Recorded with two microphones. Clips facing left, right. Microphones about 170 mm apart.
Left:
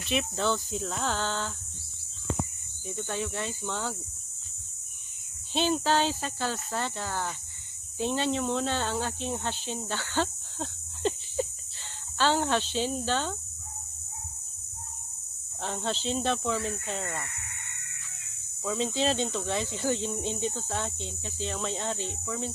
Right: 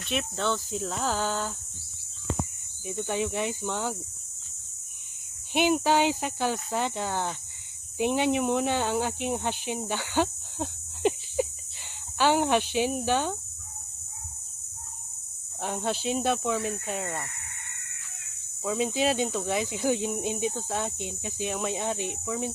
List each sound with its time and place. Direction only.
0.0 s speech: centre (ahead or behind)
2.9 s speech: 15° right (ahead or behind)
5.5 s speech: 15° right (ahead or behind)
15.6 s speech: 10° right (ahead or behind)
18.6 s speech: 15° right (ahead or behind)